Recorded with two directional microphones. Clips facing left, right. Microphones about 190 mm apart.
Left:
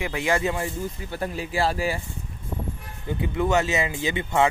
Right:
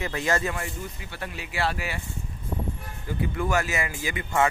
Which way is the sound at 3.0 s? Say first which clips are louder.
Left 3 dB; 20° left (ahead or behind).